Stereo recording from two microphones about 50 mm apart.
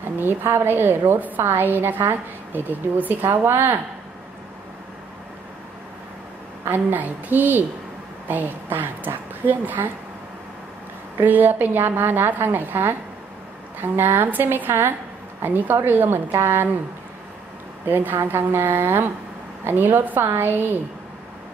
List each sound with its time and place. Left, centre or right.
0.2 s a woman's voice: right
6.6 s a woman's voice: right
11.2 s a woman's voice: right
16.3 s a woman's voice: right
17.8 s a woman's voice: right
20.2 s a woman's voice: right